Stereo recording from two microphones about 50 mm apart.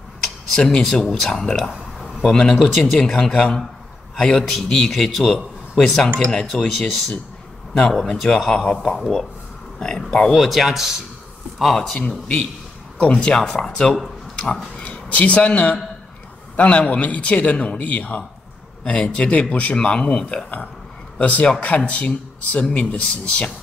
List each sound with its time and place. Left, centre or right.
0.6 s speech: centre
6.6 s speech: centre
9.8 s speech: centre
12.0 s a man's voice: centre
14.3 s a sound: centre
14.9 s a man's voice: left